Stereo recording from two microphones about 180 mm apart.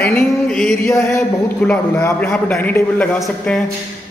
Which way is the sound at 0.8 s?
15° left (ahead or behind).